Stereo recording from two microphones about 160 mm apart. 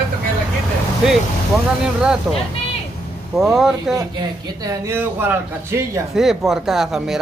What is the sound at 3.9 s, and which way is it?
A man's voice, 25° right (ahead or behind).